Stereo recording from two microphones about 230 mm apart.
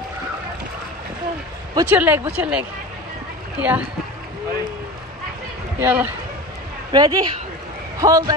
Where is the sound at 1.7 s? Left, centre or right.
Centre.